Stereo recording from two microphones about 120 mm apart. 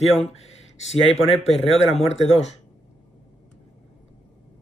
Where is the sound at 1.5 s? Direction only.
65° left (ahead or behind).